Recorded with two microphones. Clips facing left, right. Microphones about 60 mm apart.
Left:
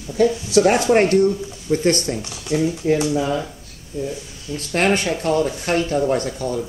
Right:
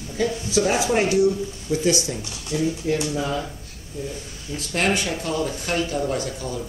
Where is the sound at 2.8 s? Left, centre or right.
Left.